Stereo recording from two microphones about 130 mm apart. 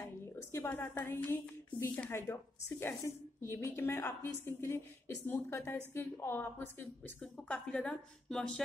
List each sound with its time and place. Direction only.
0.5 s a woman's voice: 20° left (ahead or behind)